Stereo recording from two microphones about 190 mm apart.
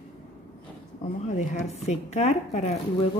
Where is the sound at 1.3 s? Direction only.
40° left (ahead or behind).